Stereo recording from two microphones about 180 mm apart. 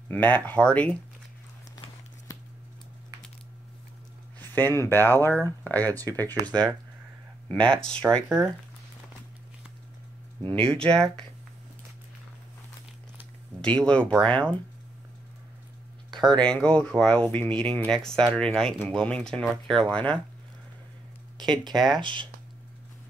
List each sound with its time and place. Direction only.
0.1 s speech: 10° left (ahead or behind)
4.4 s speech: 10° left (ahead or behind)
10.7 s speech: 5° left (ahead or behind)
13.6 s speech: 5° left (ahead or behind)
16.1 s a sound: 25° right (ahead or behind)
16.3 s speech: 5° left (ahead or behind)
21.4 s speech: 25° right (ahead or behind)